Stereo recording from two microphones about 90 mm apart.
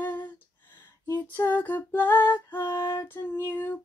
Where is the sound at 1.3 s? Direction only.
20° left (ahead or behind).